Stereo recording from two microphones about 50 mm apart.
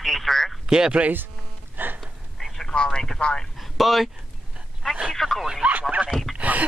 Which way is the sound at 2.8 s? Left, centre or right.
Centre.